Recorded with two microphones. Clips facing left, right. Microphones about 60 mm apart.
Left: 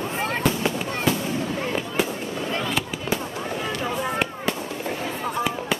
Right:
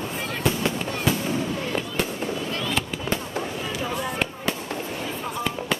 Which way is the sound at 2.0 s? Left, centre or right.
Centre.